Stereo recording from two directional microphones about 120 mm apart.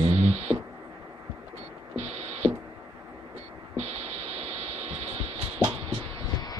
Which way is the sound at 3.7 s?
60° right (ahead or behind).